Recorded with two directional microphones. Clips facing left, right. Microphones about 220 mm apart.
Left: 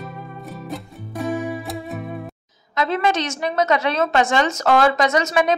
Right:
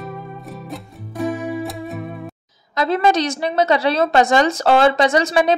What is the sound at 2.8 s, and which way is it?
A woman's voice, 35° right (ahead or behind).